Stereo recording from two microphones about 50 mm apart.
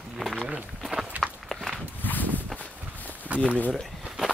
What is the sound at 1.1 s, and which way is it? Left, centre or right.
Walk, right.